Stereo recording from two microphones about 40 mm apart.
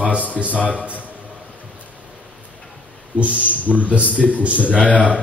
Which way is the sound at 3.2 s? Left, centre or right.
Right.